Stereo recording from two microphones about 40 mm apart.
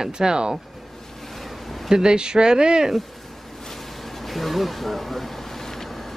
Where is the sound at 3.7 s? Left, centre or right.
Centre.